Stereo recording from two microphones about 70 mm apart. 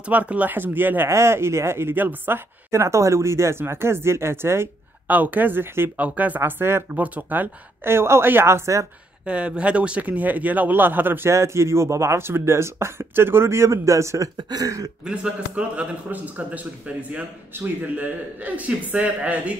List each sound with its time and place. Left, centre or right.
0.0 s a man's voice: centre
1.0 s speech: right
5.0 s a man's voice: right
9.2 s speech: centre; by 14.3 s right
14.3 s speech: right
15.0 s a man's voice: centre